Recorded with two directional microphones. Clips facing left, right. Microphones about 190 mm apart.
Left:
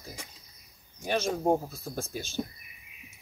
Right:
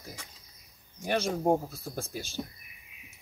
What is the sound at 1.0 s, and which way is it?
Speech, 15° right (ahead or behind).